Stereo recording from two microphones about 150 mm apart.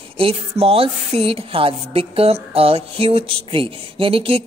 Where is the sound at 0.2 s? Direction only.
40° right (ahead or behind).